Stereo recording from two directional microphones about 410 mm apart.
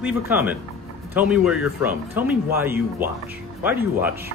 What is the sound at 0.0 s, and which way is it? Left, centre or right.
Speech, centre.